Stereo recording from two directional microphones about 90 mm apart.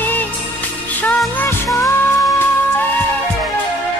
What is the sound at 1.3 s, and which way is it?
Music, 30° left (ahead or behind).